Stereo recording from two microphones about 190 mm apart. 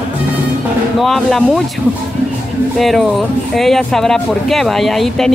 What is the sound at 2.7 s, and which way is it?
Speech, centre (ahead or behind).